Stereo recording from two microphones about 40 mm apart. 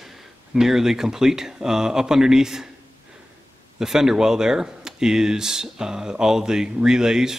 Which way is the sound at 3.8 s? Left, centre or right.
Centre.